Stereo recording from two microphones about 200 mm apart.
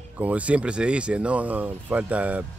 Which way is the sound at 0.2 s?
5° right (ahead or behind).